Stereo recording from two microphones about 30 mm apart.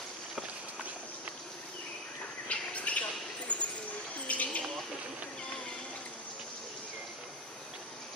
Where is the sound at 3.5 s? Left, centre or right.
Left.